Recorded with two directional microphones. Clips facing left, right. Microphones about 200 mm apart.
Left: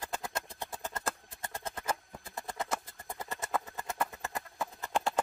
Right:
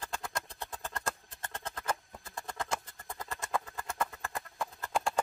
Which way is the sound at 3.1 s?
20° left (ahead or behind).